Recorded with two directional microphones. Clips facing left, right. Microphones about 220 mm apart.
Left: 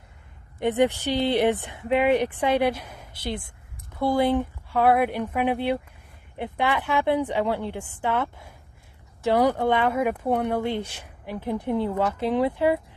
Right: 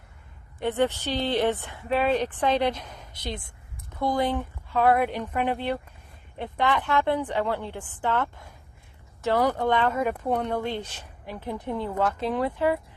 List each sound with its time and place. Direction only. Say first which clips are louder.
0.6 s speech: left 3 dB; 15° left (ahead or behind)